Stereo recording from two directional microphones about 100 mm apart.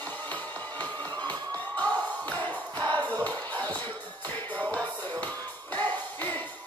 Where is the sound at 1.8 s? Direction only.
15° left (ahead or behind).